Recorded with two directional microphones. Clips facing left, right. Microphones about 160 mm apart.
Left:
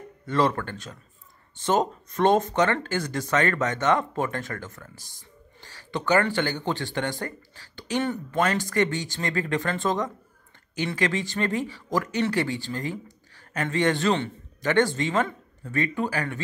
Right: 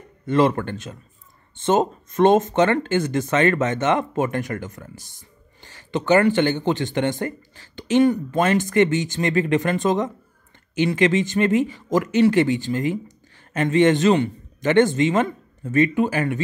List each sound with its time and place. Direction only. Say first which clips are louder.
0.3 s a man's voice: right 5 dB; 20° right (ahead or behind)